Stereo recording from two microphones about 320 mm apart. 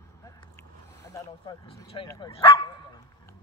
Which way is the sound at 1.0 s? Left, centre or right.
Centre.